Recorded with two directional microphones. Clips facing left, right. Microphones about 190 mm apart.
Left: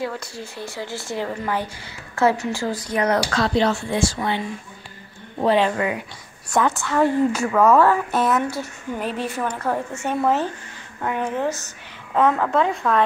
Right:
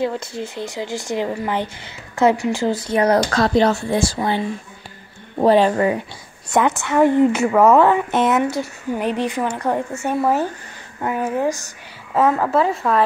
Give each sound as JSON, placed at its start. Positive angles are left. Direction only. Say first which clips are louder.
{"t": 0.0, "sound": "a woman's voice", "louder": "right 6 dB", "side_deg": -25}
{"t": 3.3, "sound": "speech", "louder": "right 4 dB", "side_deg": -45}
{"t": 5.4, "sound": "speech", "louder": "right 5 dB", "side_deg": -40}
{"t": 6.5, "sound": "a woman's voice", "louder": "right 3 dB", "side_deg": -20}